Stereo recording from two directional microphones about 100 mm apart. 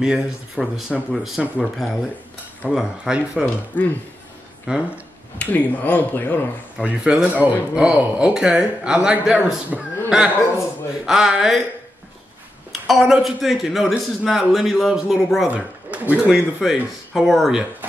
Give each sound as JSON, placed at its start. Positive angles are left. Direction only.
{"t": 0.0, "sound": "a man's voice", "side_deg": -5}
{"t": 3.8, "sound": "speech", "side_deg": 20}
{"t": 4.6, "sound": "speech", "side_deg": -10}
{"t": 5.4, "sound": "speech", "side_deg": 15}
{"t": 6.8, "sound": "a man's voice", "side_deg": -10}
{"t": 12.8, "sound": "a man's voice", "side_deg": 0}
{"t": 15.5, "sound": "speech", "side_deg": -15}
{"t": 16.6, "sound": "a man's voice", "side_deg": -5}